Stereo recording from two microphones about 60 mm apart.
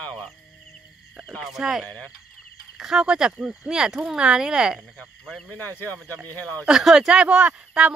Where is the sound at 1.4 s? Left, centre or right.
Centre.